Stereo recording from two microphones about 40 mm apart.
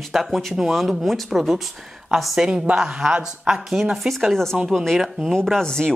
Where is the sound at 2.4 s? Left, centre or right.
Right; by 4.3 s centre.